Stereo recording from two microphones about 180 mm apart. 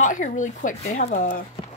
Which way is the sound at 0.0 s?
45° left (ahead or behind).